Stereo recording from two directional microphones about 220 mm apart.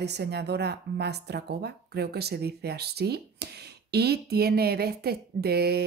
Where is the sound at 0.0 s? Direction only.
50° right (ahead or behind).